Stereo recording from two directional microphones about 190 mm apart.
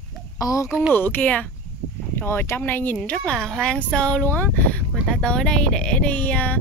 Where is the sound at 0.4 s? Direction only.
15° left (ahead or behind).